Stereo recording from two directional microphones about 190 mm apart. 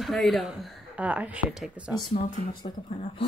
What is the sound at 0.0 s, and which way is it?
Speech, centre (ahead or behind).